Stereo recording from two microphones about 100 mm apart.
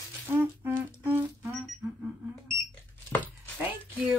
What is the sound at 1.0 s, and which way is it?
Music, 20° right (ahead or behind).